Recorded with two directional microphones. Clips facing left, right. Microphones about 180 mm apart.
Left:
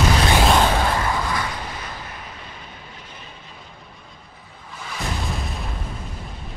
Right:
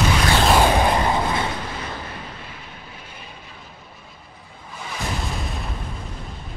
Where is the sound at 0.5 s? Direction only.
15° right (ahead or behind).